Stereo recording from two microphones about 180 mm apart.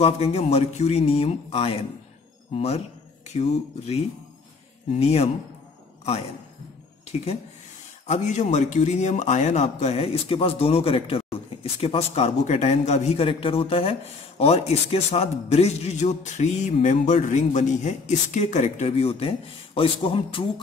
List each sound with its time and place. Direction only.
0.0 s a man's voice: 35° left (ahead or behind)
8.1 s a man's voice: 40° left (ahead or behind)